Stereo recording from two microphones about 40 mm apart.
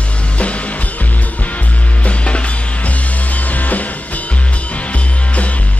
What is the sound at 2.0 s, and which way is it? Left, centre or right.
Music, left.